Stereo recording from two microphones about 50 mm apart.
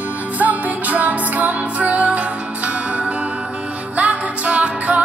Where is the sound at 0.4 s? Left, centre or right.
Right.